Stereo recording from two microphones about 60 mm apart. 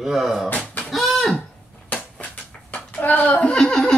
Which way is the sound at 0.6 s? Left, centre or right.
Left.